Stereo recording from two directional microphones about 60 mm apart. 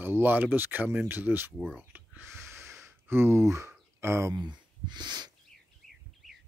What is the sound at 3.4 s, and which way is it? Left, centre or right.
Speech, right.